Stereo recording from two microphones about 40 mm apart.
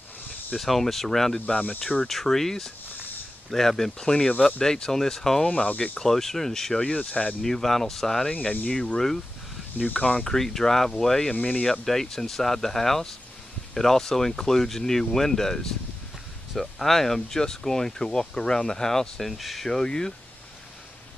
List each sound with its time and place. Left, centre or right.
0.6 s speech: centre
4.0 s speech: centre
5.5 s speech: left
5.9 s speech: centre
6.8 s speech: left
7.4 s speech: centre
8.3 s speech: left
8.6 s speech: centre
9.9 s speech: left
19.3 s speech: centre